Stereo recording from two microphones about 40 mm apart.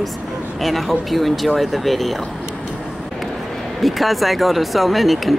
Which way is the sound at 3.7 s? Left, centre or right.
Centre.